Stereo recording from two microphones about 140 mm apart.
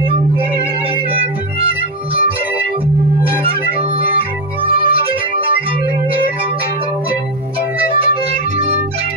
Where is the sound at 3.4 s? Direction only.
45° right (ahead or behind).